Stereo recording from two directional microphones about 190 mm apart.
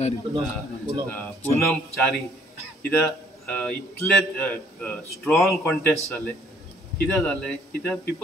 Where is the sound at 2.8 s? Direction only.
10° left (ahead or behind).